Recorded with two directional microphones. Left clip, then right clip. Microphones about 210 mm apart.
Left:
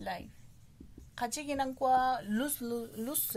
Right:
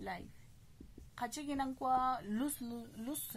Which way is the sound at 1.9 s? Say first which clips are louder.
Left 6 dB; 15° left (ahead or behind).